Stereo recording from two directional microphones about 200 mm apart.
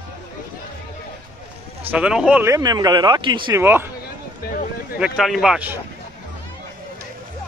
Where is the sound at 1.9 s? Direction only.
5° right (ahead or behind); by 3.6 s 25° right (ahead or behind).